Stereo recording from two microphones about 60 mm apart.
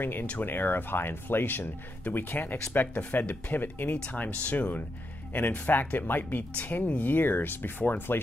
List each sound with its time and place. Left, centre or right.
0.0 s speech: left